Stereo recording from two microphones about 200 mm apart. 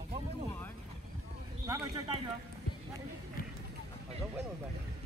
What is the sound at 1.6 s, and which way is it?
Speech, 20° right (ahead or behind).